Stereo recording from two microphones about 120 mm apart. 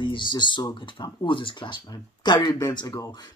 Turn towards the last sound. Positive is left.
turn(degrees=35)  # may be behind; listen again after turning